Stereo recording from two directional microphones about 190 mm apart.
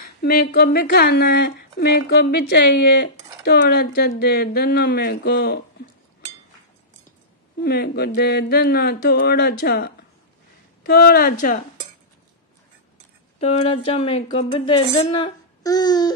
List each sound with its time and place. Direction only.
0.0 s speech: 55° left (ahead or behind)
7.6 s speech: 55° left (ahead or behind)
13.4 s speech: 35° left (ahead or behind)